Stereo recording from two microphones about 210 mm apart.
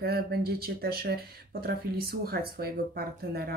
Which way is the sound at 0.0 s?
45° right (ahead or behind).